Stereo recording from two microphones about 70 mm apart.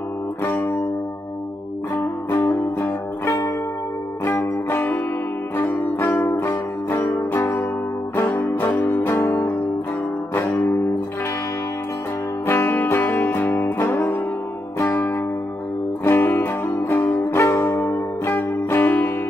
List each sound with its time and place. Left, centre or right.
0.6 s music: left
2.3 s music: left
2.8 s music: left
5.6 s music: left
6.5 s music: left
7.2 s music: left
8.7 s music: left
9.0 s music: left
10.6 s music: left
12.4 s music: left
13.2 s music: left
13.9 s music: left
17.6 s music: left